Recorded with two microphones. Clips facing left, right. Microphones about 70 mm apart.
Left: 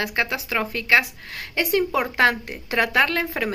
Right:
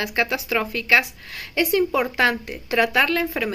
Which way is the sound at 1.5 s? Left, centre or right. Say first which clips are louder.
Right 2 dB; left.